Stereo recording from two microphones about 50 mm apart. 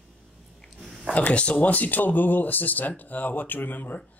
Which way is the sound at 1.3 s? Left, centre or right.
Left.